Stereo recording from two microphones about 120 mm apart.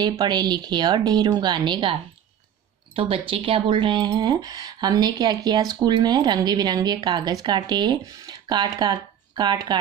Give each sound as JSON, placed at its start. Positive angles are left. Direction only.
{"t": 0.0, "sound": "speech", "side_deg": -35}
{"t": 3.0, "sound": "speech", "side_deg": -50}